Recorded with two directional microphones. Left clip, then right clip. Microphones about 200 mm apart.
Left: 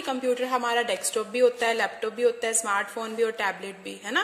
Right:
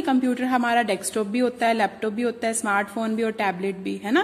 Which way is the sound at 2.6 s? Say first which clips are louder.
Right 4 dB; 30° right (ahead or behind).